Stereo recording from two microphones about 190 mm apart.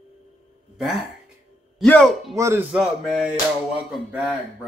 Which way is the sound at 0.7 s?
Centre (ahead or behind).